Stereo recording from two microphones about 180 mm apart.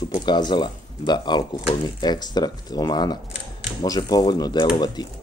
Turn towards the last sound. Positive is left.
turn(degrees=25)  # may be behind; listen again after turning